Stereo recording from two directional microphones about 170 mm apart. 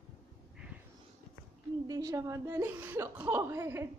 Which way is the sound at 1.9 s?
20° right (ahead or behind).